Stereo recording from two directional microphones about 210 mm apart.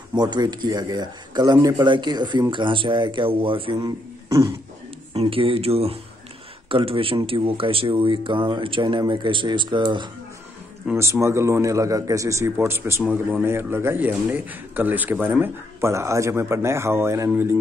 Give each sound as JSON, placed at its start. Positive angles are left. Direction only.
{"t": 0.1, "sound": "speech", "side_deg": -20}
{"t": 4.3, "sound": "speech", "side_deg": -15}
{"t": 5.1, "sound": "a man's voice", "side_deg": -25}